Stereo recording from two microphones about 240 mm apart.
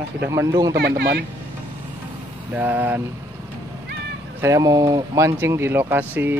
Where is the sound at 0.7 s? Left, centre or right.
Right.